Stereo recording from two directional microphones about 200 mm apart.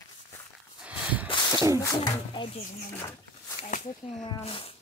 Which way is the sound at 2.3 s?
30° left (ahead or behind).